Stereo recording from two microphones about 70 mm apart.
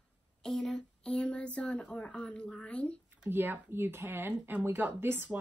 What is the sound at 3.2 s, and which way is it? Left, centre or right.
A woman's voice, right.